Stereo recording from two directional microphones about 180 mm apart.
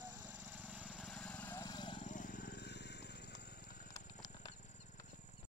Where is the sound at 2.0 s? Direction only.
45° left (ahead or behind).